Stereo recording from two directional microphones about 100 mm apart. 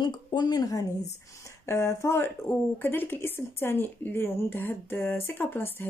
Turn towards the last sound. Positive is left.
turn(degrees=20)  # may be behind; listen again after turning